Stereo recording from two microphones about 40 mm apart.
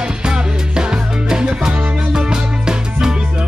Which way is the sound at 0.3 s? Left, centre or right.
Right.